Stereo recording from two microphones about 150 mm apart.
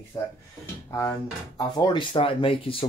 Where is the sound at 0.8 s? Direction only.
20° left (ahead or behind).